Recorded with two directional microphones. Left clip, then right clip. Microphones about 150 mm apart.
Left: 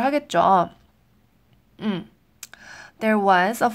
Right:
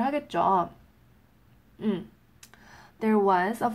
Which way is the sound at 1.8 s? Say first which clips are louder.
Left 2 dB; 60° left (ahead or behind).